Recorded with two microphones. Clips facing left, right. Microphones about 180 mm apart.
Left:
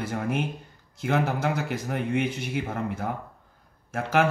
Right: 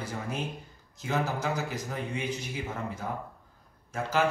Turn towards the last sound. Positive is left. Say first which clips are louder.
# left 4 dB
turn(degrees=65)  # may be behind; listen again after turning